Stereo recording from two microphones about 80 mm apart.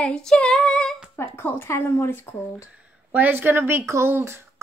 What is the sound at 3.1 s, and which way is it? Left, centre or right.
Speech, right.